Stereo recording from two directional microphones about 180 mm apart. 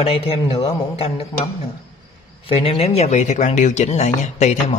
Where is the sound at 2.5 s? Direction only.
35° left (ahead or behind).